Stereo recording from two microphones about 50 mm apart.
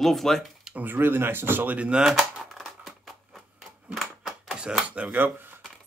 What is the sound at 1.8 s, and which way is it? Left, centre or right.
Speech, right.